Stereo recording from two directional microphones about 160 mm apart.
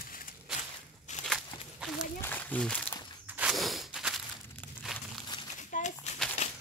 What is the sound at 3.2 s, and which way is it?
Walk, 10° right (ahead or behind).